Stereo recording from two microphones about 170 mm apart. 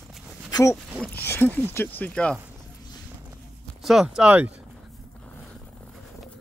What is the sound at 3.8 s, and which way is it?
Speech, 5° right (ahead or behind).